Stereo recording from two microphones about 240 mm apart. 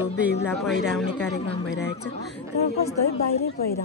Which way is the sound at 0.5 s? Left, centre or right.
Centre.